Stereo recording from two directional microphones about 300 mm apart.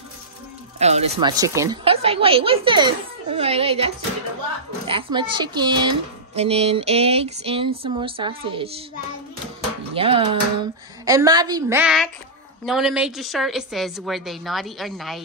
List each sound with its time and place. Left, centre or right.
0.7 s a woman's voice: right
9.9 s a woman's voice: centre